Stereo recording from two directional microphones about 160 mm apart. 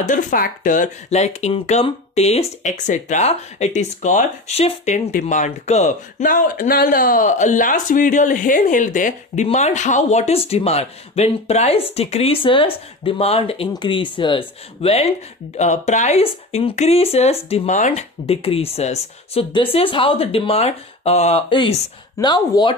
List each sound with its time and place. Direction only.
0.0 s speech: 55° left (ahead or behind)
22.2 s speech: 25° left (ahead or behind)